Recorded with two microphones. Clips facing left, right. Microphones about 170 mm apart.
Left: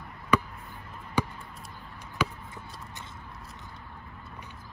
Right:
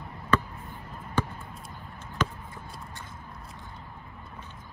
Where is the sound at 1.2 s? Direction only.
15° left (ahead or behind).